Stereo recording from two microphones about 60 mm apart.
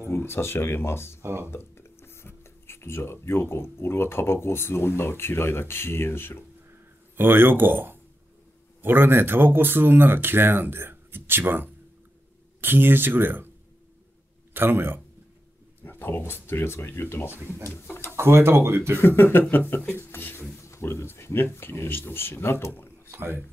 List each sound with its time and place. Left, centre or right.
0.1 s speech: left
1.2 s speech: right
1.5 s a sound: left
3.7 s speech: left
7.2 s speech: right
14.5 s speech: right
15.8 s a sound: left
16.4 s speech: left
18.1 s speech: right
18.9 s speech: left
20.6 s speech: left
23.1 s speech: right